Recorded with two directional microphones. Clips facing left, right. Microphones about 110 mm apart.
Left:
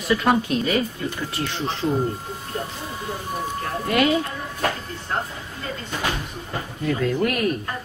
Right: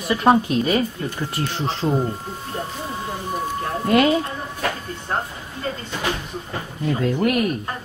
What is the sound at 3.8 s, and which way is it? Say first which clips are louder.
Speech: right 3 dB; 30° right (ahead or behind).